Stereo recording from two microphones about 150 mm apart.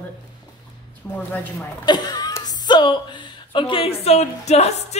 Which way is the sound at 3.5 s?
35° left (ahead or behind).